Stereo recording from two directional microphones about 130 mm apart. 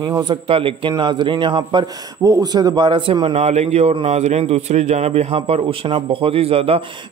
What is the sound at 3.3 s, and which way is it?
A man's voice, 60° right (ahead or behind).